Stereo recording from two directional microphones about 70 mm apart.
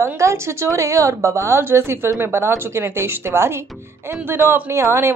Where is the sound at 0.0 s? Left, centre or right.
Right.